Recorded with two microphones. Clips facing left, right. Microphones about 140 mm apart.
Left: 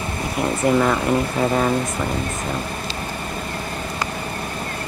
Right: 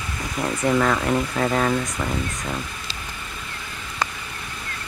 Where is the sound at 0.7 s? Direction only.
10° left (ahead or behind).